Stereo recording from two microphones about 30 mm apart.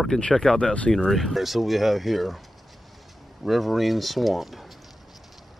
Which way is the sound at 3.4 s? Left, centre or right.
Centre.